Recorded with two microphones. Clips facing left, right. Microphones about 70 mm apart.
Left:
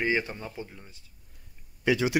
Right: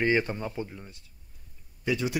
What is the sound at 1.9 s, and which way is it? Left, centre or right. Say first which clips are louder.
Speech: left 4 dB; left.